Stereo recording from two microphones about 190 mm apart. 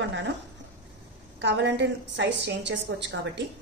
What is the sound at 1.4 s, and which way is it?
A woman's voice, 65° right (ahead or behind).